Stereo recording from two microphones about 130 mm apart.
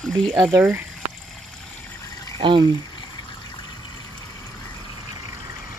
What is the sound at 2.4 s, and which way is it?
Speech, 40° right (ahead or behind).